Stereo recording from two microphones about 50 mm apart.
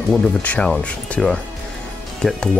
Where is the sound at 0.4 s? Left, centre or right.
Left.